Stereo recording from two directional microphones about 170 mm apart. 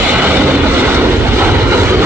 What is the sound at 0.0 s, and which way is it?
Vehicle, 10° right (ahead or behind).